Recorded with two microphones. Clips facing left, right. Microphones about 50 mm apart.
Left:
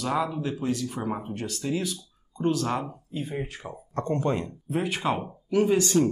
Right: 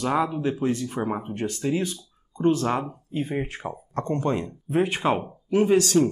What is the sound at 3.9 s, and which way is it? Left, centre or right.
Speech, centre.